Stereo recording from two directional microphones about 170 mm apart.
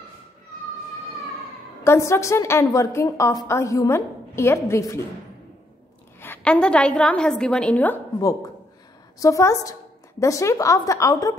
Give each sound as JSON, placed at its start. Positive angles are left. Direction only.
{"t": 1.9, "sound": "a woman's voice", "side_deg": 15}
{"t": 6.2, "sound": "a woman's voice", "side_deg": 10}
{"t": 9.2, "sound": "a woman's voice", "side_deg": 20}